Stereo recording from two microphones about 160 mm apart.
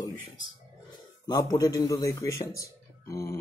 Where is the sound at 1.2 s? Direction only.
25° left (ahead or behind).